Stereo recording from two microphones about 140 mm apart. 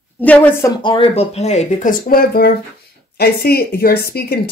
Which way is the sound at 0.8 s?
35° left (ahead or behind).